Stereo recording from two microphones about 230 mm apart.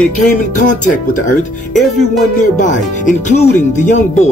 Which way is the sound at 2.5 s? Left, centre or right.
Left.